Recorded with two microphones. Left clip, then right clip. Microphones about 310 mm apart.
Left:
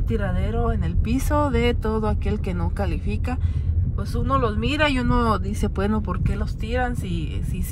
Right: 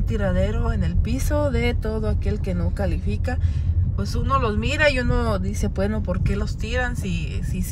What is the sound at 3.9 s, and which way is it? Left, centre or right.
Speech, centre.